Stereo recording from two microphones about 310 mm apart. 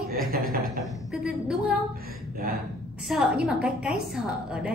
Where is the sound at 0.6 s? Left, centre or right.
Centre.